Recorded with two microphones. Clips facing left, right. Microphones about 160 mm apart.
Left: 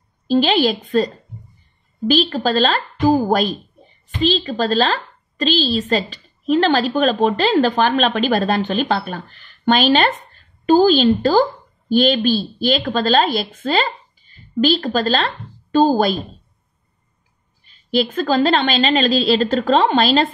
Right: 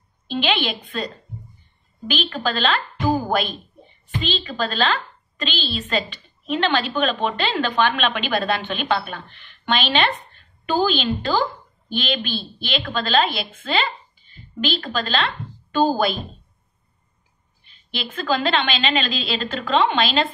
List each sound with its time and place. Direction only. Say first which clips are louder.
0.3 s a woman's voice: left 8 dB; 40° left (ahead or behind)
17.6 s speech: left 13 dB; 40° left (ahead or behind)